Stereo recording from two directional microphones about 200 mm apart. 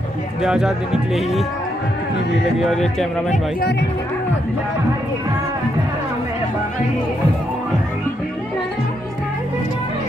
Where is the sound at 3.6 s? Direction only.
55° left (ahead or behind).